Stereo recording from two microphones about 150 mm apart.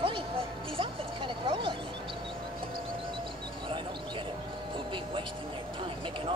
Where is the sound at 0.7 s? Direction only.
35° right (ahead or behind).